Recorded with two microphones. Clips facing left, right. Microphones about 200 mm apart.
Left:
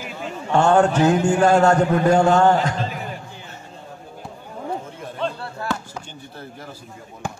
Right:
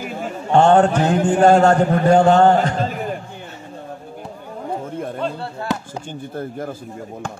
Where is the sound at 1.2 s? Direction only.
55° right (ahead or behind).